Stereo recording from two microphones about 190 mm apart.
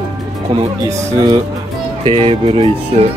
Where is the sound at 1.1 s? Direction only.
20° right (ahead or behind).